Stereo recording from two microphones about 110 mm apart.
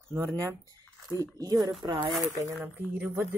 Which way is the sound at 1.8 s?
45° right (ahead or behind).